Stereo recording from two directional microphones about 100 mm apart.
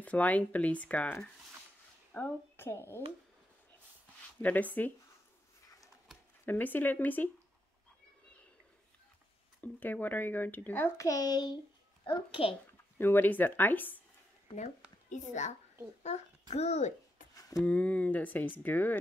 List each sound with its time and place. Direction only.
0.0 s speech: 15° left (ahead or behind)
4.4 s speech: 15° left (ahead or behind)
6.4 s speech: 20° left (ahead or behind)
9.6 s speech: 15° left (ahead or behind)
11.0 s speech: 35° left (ahead or behind)
12.1 s a child's voice: 65° left (ahead or behind)
13.0 s speech: 20° left (ahead or behind)
16.4 s a child's voice: 90° left
17.4 s a sound: 35° left (ahead or behind)
17.6 s speech: 15° left (ahead or behind)